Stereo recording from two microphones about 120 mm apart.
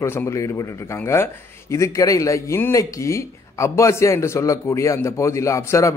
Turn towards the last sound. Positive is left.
turn(degrees=25)  # may be behind; listen again after turning